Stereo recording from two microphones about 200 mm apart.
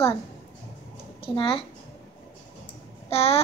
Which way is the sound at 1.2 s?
25° left (ahead or behind).